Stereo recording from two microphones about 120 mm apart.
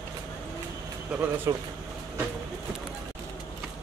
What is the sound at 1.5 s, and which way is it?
Speech, 25° right (ahead or behind).